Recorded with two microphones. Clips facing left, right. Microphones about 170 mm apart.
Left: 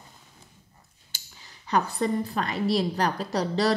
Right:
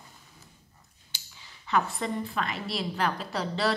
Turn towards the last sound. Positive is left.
turn(degrees=40)  # may be behind; listen again after turning